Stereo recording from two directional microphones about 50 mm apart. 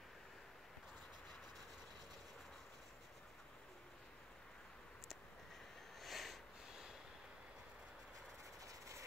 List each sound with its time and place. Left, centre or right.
5.9 s sniff: centre
8.6 s vehicle: right